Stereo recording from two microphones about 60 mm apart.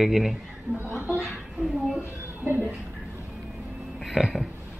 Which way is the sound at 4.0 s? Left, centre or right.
Centre.